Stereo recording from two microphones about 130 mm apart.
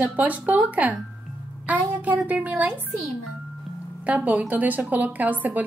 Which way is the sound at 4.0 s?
10° right (ahead or behind).